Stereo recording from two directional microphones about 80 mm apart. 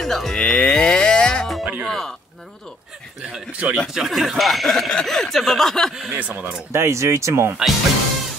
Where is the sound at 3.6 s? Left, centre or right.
Centre.